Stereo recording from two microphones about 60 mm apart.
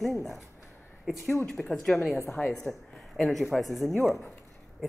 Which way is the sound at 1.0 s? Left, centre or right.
Centre.